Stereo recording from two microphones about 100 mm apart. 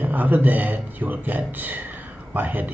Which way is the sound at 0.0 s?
15° right (ahead or behind).